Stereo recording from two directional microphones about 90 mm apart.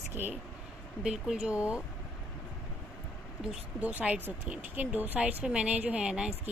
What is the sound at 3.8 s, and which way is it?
Speech, 15° right (ahead or behind).